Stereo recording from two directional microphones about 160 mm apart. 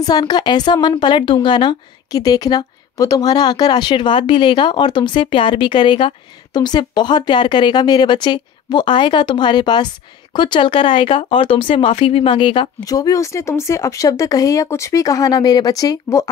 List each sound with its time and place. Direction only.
0.0 s a woman's voice: 25° left (ahead or behind)